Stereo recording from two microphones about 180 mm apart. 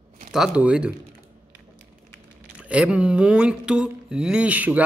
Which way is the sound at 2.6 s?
5° right (ahead or behind).